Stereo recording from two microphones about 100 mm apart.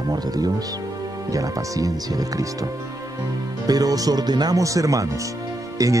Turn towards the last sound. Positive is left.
turn(degrees=-35)  # may be behind; listen again after turning